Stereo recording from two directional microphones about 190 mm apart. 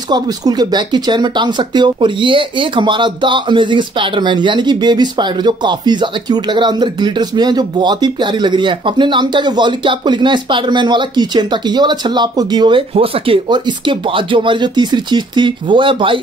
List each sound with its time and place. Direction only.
0.1 s speech: 20° right (ahead or behind)